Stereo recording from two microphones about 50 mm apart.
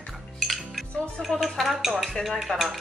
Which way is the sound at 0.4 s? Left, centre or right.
Centre.